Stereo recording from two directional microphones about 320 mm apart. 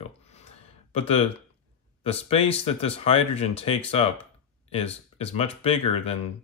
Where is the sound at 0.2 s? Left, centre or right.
Centre.